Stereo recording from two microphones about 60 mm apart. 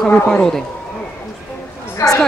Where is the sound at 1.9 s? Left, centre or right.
Left.